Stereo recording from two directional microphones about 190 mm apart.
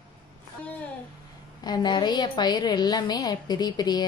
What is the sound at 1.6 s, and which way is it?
A woman's voice, 20° left (ahead or behind).